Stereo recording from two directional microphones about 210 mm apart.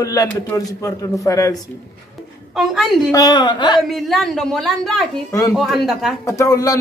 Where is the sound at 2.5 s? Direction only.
Centre (ahead or behind).